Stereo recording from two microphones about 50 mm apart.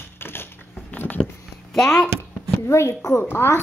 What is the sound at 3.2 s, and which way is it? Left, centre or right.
Speech, left.